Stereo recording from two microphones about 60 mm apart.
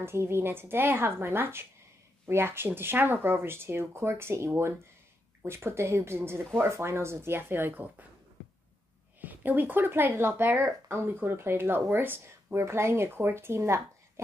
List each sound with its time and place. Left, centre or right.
0.0 s speech: right
9.2 s speech: right